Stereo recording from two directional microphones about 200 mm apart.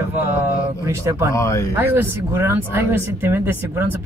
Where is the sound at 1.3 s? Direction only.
15° left (ahead or behind).